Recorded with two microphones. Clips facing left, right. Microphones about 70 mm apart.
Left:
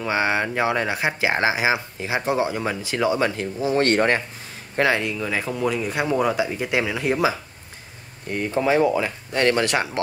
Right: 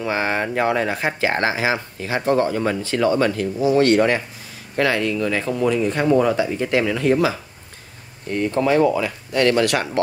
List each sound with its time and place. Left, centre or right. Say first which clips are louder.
0.0 s speech: even; centre
3.6 s speech: right 4 dB; left
4.7 s speech: right 1 dB; left
5.1 s speech: right 4 dB; centre
9.0 s speech: right 2 dB; left